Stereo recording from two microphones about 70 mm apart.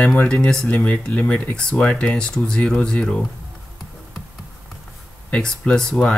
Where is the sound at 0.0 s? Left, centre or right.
Left.